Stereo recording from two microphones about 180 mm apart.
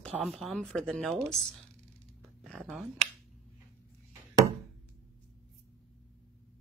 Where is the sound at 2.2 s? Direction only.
5° left (ahead or behind).